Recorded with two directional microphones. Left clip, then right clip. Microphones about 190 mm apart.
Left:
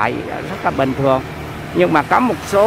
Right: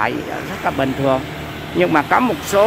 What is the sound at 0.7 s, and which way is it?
Speech, 10° left (ahead or behind).